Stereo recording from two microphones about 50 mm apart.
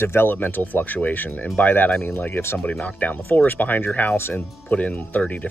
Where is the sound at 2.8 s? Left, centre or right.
Left.